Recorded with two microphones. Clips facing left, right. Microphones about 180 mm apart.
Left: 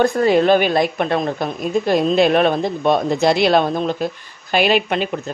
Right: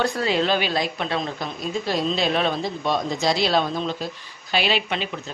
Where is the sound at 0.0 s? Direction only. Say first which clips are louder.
Left 8 dB; 50° left (ahead or behind).